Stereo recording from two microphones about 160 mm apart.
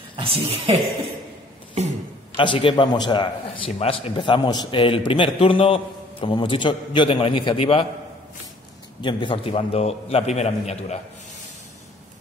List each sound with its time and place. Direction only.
0.1 s speech: 35° right (ahead or behind)
2.3 s a man's voice: 30° left (ahead or behind)
9.0 s a man's voice: 30° left (ahead or behind)